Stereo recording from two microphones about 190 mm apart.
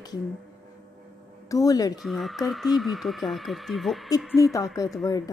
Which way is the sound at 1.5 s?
20° left (ahead or behind).